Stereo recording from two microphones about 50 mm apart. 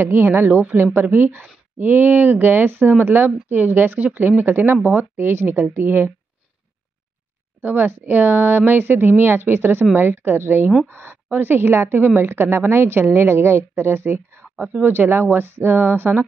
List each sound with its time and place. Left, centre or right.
0.0 s a woman's voice: right
7.6 s a woman's voice: right
14.6 s a woman's voice: right